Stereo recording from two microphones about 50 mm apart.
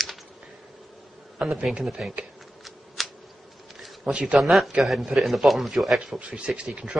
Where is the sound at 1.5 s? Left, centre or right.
Centre.